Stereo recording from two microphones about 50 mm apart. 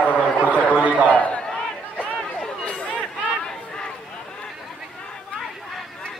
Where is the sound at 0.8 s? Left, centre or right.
Right.